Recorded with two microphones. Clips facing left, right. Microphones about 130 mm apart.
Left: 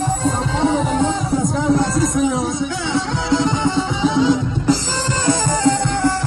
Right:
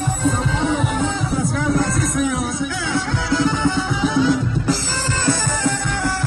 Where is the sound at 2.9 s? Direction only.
25° left (ahead or behind).